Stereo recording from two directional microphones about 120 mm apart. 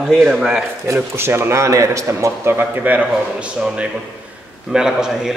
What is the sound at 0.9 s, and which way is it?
A man's voice, 20° right (ahead or behind).